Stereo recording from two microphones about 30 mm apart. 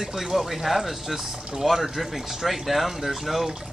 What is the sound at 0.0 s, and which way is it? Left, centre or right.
Speech, centre.